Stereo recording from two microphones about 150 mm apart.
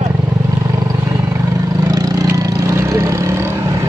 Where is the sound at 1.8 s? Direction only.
25° right (ahead or behind).